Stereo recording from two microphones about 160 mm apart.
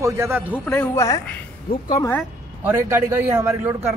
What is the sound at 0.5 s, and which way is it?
A man's voice, 15° left (ahead or behind).